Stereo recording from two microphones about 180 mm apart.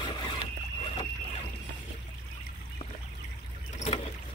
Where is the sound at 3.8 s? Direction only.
35° left (ahead or behind).